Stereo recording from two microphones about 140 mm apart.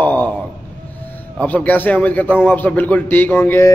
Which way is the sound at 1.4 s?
10° left (ahead or behind).